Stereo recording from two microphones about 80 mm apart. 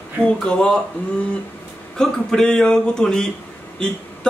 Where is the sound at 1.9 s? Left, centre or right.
Centre.